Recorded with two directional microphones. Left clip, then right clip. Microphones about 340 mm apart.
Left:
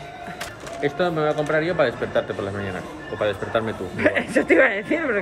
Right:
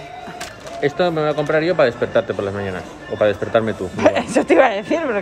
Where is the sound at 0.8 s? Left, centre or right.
Right.